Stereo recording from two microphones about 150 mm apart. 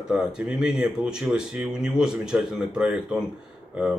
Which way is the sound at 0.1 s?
5° right (ahead or behind).